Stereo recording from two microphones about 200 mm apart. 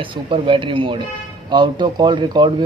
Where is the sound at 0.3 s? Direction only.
25° right (ahead or behind).